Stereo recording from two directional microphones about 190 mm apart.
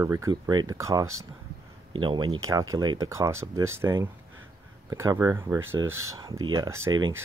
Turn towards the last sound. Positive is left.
turn(degrees=-20)  # may be behind; listen again after turning